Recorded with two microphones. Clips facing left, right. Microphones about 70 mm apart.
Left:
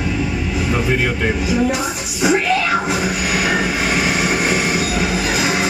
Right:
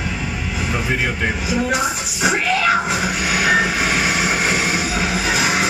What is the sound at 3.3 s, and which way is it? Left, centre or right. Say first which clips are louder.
Vehicle: right 3 dB; centre.